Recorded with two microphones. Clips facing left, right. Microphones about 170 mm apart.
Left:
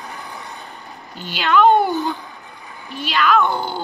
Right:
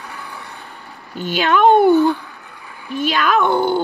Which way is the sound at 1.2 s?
50° right (ahead or behind).